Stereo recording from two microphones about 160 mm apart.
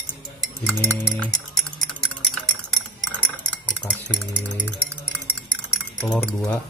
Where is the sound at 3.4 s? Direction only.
10° left (ahead or behind).